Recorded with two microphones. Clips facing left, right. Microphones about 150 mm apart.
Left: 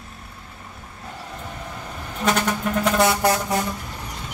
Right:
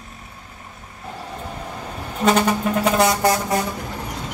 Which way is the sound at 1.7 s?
30° right (ahead or behind).